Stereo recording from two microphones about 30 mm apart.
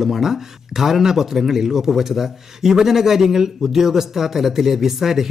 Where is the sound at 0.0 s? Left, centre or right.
Centre.